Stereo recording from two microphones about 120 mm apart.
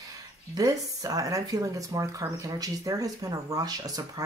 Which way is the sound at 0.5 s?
30° right (ahead or behind).